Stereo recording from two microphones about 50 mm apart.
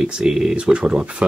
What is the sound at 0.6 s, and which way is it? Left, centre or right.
Speech, right.